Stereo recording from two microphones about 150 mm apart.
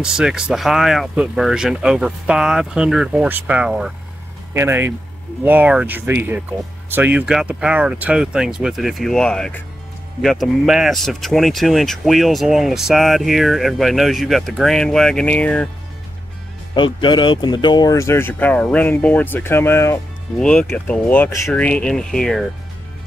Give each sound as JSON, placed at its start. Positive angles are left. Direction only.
{"t": 0.0, "sound": "speech", "side_deg": -5}
{"t": 16.7, "sound": "speech", "side_deg": 30}
{"t": 20.3, "sound": "speech", "side_deg": 5}